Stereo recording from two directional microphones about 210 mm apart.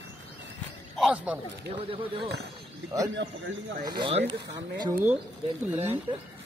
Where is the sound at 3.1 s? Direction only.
60° right (ahead or behind).